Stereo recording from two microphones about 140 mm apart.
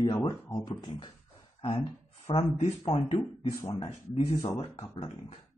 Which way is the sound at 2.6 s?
45° left (ahead or behind).